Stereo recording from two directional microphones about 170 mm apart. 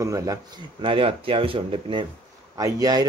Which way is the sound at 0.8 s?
30° right (ahead or behind).